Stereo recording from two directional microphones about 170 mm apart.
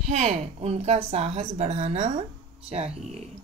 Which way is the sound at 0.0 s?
40° right (ahead or behind).